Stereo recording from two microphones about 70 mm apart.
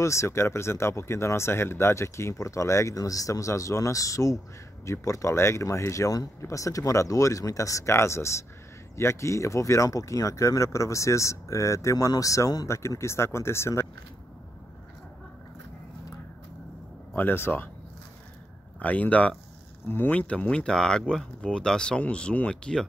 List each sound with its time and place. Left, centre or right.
0.0 s speech: left
12.6 s speech: left
17.1 s speech: left
18.8 s speech: left
20.2 s speech: centre